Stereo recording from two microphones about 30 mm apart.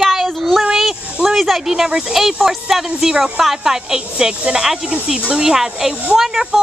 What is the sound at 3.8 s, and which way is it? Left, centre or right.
Speech, right.